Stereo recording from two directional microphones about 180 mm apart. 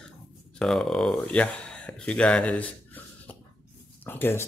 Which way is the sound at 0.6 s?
Centre (ahead or behind).